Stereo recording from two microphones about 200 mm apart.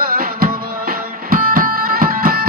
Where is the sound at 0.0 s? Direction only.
50° right (ahead or behind).